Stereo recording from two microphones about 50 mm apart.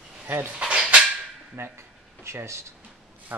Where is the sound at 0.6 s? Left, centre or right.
Right.